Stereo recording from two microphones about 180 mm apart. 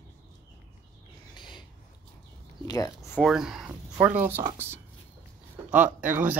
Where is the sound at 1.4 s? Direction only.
25° left (ahead or behind).